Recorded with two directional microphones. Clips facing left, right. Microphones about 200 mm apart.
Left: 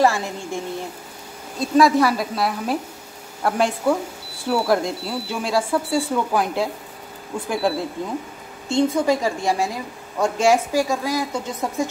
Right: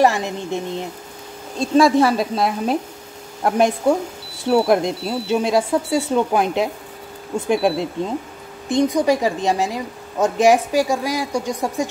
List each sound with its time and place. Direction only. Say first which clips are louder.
0.0 s a woman's voice: right 2 dB; 20° right (ahead or behind)